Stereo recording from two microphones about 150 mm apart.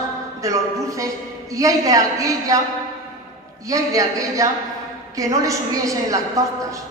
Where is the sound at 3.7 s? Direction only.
20° right (ahead or behind).